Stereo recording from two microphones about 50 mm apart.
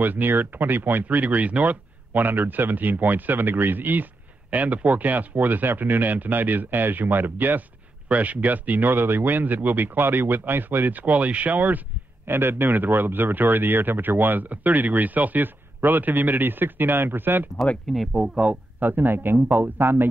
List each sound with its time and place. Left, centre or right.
0.0 s speech: right
8.1 s speech: right
11.0 s speech: right
12.3 s speech: right
17.9 s speech: centre
18.8 s a man's voice: right